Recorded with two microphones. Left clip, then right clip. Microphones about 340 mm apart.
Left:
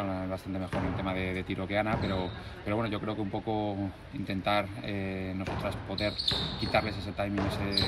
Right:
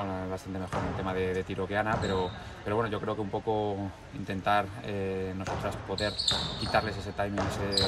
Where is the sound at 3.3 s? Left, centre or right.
Right.